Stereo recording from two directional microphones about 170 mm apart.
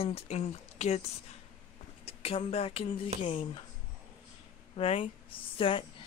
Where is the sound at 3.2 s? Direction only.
35° left (ahead or behind).